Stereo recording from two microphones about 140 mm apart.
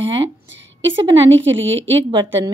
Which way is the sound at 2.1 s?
30° right (ahead or behind).